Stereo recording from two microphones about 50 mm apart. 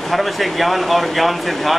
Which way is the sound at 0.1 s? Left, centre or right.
Centre.